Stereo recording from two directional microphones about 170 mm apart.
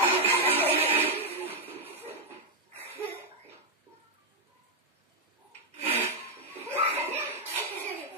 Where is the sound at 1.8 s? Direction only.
35° right (ahead or behind).